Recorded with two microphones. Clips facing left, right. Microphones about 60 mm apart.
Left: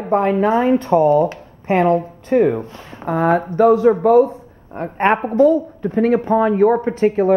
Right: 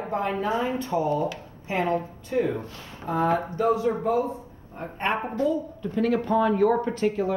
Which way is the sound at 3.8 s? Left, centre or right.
Left.